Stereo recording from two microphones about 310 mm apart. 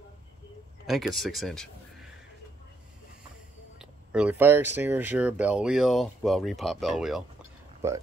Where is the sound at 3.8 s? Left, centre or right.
Centre.